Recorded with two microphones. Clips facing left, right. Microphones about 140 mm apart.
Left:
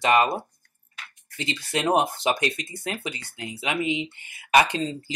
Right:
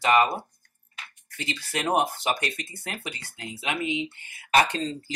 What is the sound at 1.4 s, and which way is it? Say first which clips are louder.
Speech: left 3 dB; 20° left (ahead or behind).